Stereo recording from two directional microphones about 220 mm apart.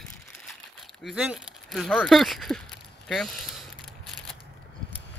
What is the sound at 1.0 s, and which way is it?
Speech, 5° right (ahead or behind).